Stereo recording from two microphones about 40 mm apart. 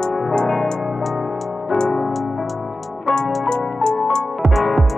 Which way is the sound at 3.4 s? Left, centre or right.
Centre.